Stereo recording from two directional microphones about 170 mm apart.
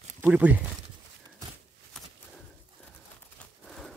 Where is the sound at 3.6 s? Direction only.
Centre (ahead or behind).